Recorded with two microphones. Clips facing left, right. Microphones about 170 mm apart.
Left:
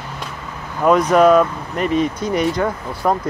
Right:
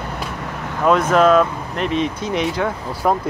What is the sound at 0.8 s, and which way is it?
Speech, centre (ahead or behind).